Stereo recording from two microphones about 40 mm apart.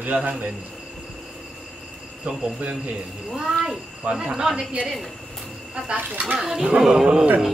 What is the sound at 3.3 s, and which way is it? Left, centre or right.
A child's voice, centre.